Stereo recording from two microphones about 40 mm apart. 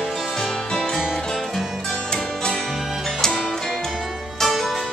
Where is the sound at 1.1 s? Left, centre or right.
Centre.